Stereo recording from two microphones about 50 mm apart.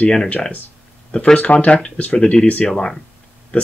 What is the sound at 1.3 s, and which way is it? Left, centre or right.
Speech, left.